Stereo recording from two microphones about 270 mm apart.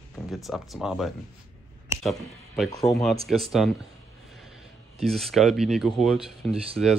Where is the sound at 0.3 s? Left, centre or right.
Centre.